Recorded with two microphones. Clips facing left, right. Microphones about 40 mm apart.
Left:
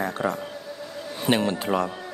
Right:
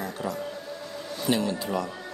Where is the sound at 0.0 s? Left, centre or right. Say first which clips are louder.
Left 5 dB; left.